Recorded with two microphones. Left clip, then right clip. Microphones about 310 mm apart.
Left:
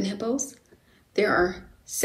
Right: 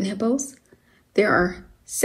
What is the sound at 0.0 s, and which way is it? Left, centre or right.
A woman's voice, right.